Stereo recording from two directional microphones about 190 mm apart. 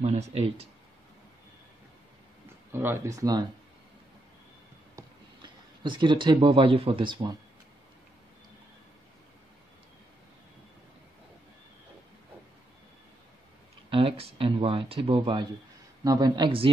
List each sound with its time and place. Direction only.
0.0 s speech: 35° right (ahead or behind)
2.7 s speech: 10° right (ahead or behind)
4.9 s speech: 25° right (ahead or behind)
13.8 s speech: 30° right (ahead or behind)